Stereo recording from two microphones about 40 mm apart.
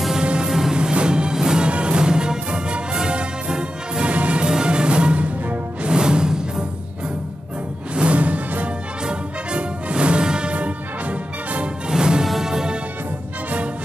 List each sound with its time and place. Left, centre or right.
0.2 s music: right
0.5 s music: centre
0.7 s music: right
1.7 s music: right
4.1 s music: right
4.5 s music: right
7.9 s music: right
11.9 s music: centre